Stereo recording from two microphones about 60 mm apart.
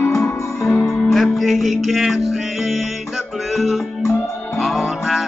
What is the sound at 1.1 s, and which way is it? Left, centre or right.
Music, centre.